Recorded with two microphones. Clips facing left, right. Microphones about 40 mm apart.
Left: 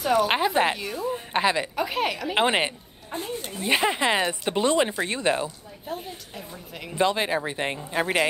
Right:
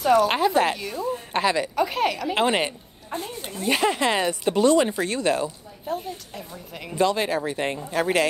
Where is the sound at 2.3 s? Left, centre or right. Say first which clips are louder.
Even; left.